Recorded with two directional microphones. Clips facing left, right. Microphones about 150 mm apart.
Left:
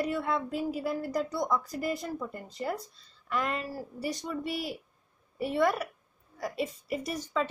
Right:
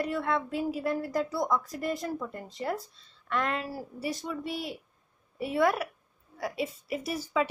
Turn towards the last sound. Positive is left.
turn(degrees=-5)  # may be behind; listen again after turning